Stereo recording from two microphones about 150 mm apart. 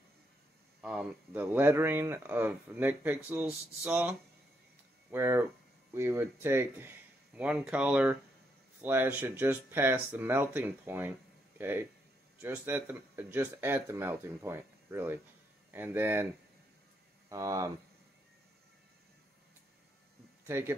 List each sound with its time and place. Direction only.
0.7 s speech: 10° right (ahead or behind)
17.3 s speech: 25° right (ahead or behind)
20.4 s speech: 15° right (ahead or behind)